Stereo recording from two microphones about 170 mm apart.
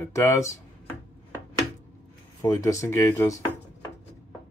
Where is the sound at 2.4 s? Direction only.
15° left (ahead or behind).